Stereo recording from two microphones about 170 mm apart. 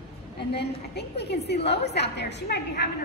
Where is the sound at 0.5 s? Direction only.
80° left.